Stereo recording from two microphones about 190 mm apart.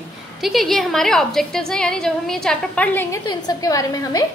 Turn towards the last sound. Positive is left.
turn(degrees=20)  # may be behind; listen again after turning